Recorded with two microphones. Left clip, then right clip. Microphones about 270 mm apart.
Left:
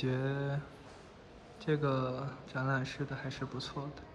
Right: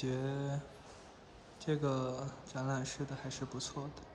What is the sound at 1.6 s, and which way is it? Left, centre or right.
Speech, centre.